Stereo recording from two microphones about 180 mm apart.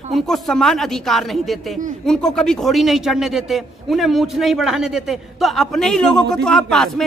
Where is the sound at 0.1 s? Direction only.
Centre (ahead or behind).